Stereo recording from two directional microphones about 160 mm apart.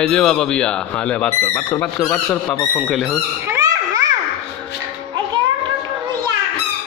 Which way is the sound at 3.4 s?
20° right (ahead or behind).